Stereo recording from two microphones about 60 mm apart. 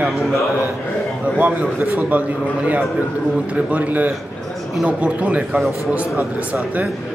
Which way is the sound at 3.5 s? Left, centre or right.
Right.